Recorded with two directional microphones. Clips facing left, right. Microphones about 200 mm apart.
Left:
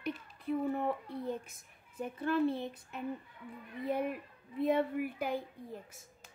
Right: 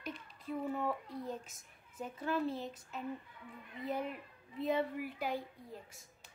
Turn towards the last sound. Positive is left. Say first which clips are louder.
# left 3 dB
turn(degrees=55)  # may be behind; listen again after turning